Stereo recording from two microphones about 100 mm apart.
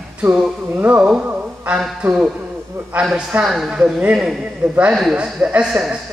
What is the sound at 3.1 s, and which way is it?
A man's voice, 10° right (ahead or behind).